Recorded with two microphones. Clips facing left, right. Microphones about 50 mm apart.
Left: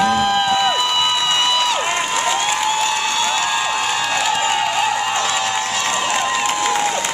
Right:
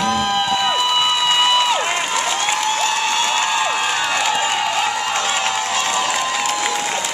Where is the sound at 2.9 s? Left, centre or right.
Centre.